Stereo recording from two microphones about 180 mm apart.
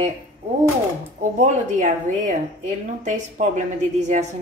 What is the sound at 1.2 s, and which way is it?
Speech, 40° right (ahead or behind).